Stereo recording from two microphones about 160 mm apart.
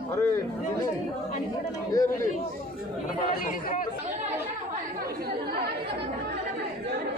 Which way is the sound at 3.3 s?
60° left (ahead or behind).